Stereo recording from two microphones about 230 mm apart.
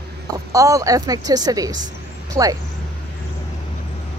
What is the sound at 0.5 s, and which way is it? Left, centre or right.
A woman's voice, centre.